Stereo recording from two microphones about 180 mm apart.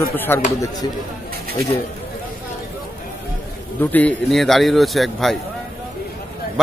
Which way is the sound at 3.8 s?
10° left (ahead or behind).